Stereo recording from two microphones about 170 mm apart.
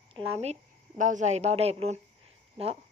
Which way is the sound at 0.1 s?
40° right (ahead or behind).